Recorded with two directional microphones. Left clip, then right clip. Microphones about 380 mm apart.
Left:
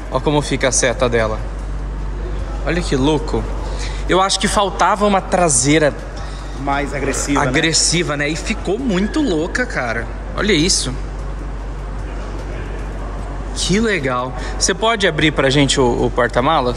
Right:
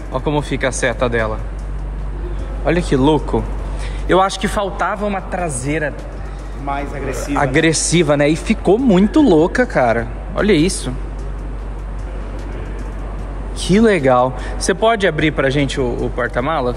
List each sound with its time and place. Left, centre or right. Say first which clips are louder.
0.1 s speech: left 2 dB; centre
2.6 s speech: right 3 dB; centre
6.7 s speech: left 3 dB; left
7.3 s speech: right 2 dB; centre
13.6 s speech: right 4 dB; centre